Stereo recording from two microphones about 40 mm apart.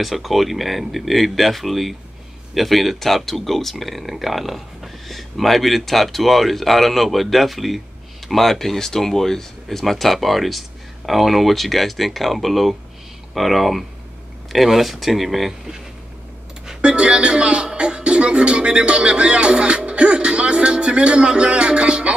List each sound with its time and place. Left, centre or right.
0.0 s speech: centre
16.8 s a man's voice: right